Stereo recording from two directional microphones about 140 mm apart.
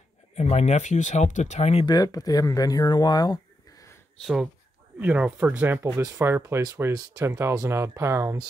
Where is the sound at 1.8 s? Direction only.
30° left (ahead or behind).